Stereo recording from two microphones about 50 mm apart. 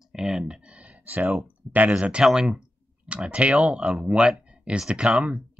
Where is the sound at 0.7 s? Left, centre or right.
Right.